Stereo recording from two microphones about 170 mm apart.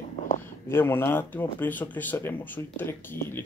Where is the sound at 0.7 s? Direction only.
15° left (ahead or behind).